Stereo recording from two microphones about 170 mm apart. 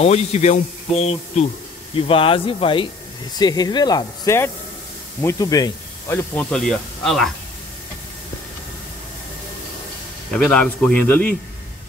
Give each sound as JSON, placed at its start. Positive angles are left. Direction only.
{"t": 0.0, "sound": "a man's voice", "side_deg": 40}
{"t": 6.3, "sound": "speech", "side_deg": 5}
{"t": 10.3, "sound": "a man's voice", "side_deg": 5}